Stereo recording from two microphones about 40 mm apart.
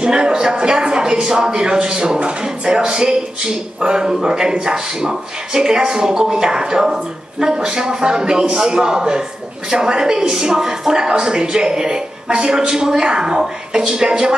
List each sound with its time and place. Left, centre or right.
0.0 s a woman's voice: right